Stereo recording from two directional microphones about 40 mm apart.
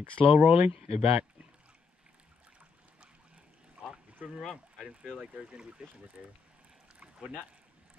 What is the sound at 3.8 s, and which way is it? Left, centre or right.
Boat, right.